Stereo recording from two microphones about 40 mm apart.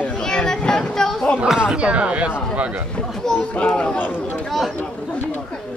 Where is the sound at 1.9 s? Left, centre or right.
Right.